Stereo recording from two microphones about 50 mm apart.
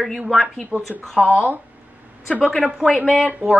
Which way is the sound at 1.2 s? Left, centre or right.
Right.